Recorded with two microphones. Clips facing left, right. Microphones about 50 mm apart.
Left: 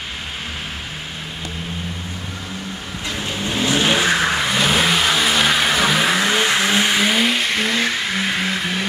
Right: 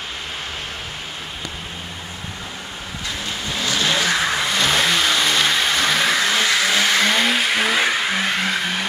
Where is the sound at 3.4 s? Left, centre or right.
Left.